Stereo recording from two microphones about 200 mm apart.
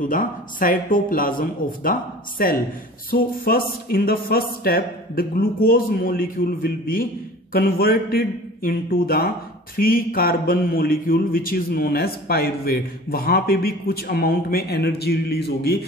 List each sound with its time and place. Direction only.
0.0 s speech: 45° left (ahead or behind)